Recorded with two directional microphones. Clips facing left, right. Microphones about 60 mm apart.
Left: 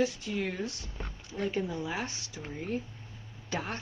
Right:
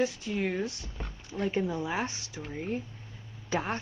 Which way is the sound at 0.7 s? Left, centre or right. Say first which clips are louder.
Right 1 dB; right.